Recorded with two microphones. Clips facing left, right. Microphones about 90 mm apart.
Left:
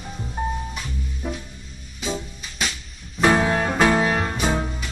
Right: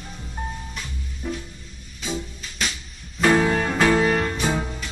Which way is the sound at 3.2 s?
15° left (ahead or behind).